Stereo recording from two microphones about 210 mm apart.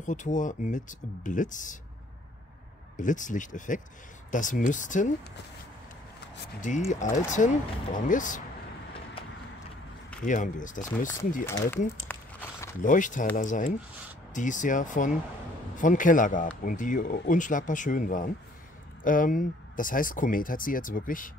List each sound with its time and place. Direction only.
0.0 s speech: 35° left (ahead or behind)
3.0 s speech: 35° left (ahead or behind)
6.9 s speech: 35° left (ahead or behind)
10.2 s speech: 35° left (ahead or behind)
11.4 s speech: 15° left (ahead or behind)
12.1 s crumpling: 10° left (ahead or behind)
12.8 s speech: 40° left (ahead or behind)